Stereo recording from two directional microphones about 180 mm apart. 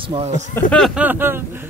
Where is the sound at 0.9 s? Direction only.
10° right (ahead or behind).